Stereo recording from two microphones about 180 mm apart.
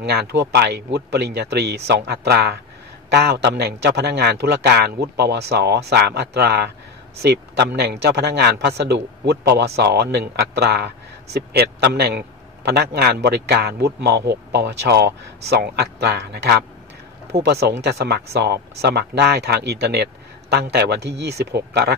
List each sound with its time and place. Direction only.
0.0 s a man's voice: 70° right (ahead or behind)